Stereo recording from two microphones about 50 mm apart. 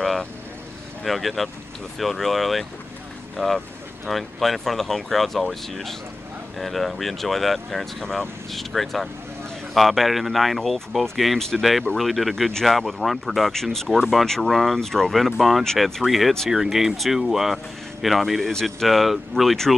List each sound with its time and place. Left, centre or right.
1.0 s speech: centre
13.9 s speech: centre
14.2 s speech: centre
18.5 s speech: centre
18.9 s speech: centre